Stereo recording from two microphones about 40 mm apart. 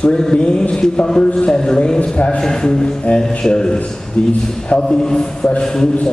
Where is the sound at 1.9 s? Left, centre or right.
Left.